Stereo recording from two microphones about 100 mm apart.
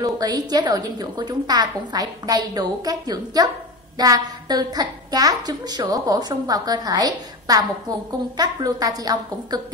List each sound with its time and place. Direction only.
0.0 s a woman's voice: 40° right (ahead or behind)